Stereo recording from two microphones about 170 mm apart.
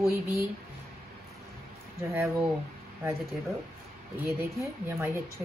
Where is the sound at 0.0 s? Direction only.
20° left (ahead or behind).